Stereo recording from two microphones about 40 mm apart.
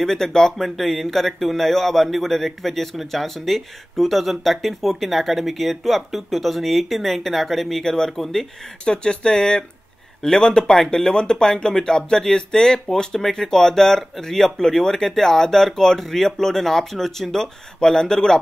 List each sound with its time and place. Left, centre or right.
0.0 s speech: centre
0.7 s a man's voice: centre
8.8 s speech: left